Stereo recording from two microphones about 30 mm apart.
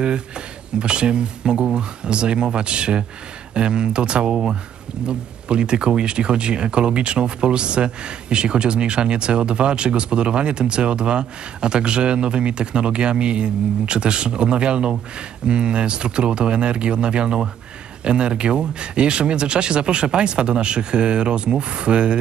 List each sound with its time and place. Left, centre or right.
0.7 s speech: right